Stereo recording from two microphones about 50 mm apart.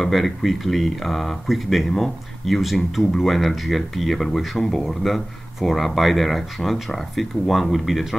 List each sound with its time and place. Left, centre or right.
0.0 s speech: centre